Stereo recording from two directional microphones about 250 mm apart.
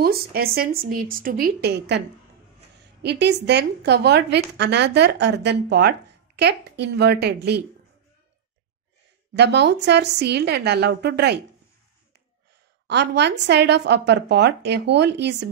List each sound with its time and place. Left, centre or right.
0.0 s a woman's voice: right
9.3 s a woman's voice: right
12.8 s a woman's voice: right